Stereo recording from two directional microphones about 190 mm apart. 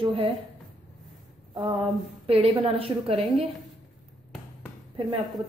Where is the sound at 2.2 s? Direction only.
30° right (ahead or behind).